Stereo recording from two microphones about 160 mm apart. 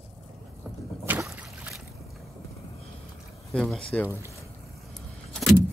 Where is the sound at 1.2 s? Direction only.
5° right (ahead or behind).